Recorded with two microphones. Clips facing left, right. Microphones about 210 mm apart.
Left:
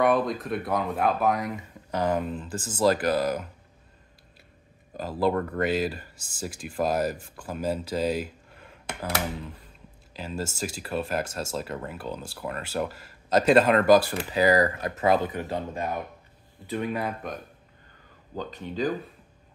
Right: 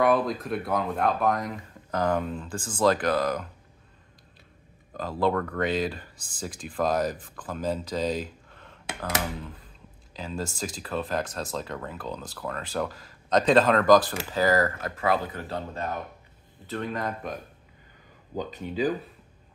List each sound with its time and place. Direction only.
0.0 s speech: centre (ahead or behind)
4.9 s speech: 5° left (ahead or behind)
18.3 s speech: 10° right (ahead or behind)